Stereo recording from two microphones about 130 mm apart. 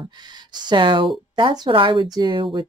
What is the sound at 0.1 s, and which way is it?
Speech, 35° right (ahead or behind).